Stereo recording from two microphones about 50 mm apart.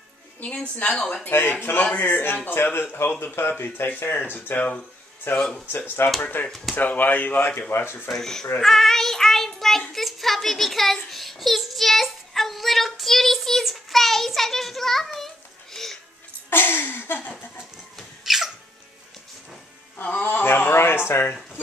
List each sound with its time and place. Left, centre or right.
0.9 s speech: centre
1.5 s speech: left
5.3 s speech: left
6.4 s speech: left
7.7 s speech: left
8.2 s speech: centre
8.5 s child singing: centre
16.4 s a sound: left
17.9 s a sound: centre
20.0 s music: left
20.7 s a sound: left